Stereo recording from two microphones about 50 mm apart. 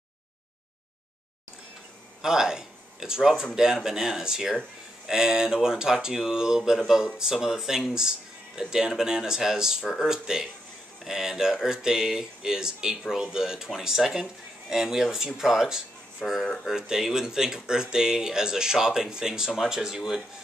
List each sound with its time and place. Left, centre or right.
2.2 s speech: centre